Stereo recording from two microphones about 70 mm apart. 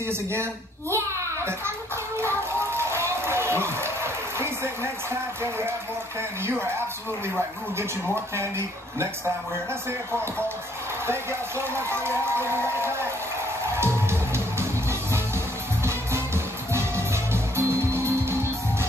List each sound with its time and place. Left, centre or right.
0.1 s a sound: right
2.1 s music: right
8.4 s speech: right
11.1 s speech: right
13.7 s music: right